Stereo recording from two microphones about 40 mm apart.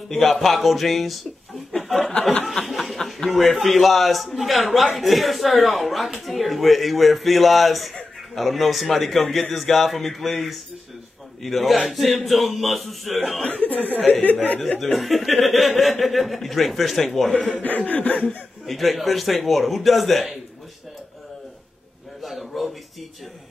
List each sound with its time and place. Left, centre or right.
0.1 s speech: centre
2.4 s a sound: centre
3.3 s speech: centre
13.5 s speech: left
14.8 s a man's voice: centre
17.6 s chuckle: left
18.7 s speech: centre
22.2 s a sound: centre